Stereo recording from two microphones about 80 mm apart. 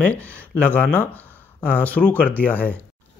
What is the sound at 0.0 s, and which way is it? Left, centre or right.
Speech, centre.